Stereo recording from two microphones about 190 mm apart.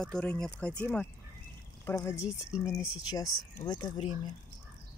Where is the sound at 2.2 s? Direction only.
5° right (ahead or behind).